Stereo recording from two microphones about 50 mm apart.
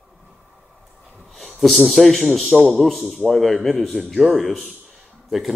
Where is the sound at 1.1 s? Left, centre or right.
Centre.